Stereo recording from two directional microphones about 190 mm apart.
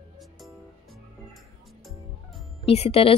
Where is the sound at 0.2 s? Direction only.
Centre (ahead or behind).